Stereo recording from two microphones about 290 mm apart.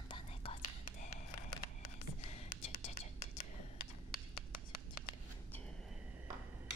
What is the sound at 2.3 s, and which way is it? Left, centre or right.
Whispering, left.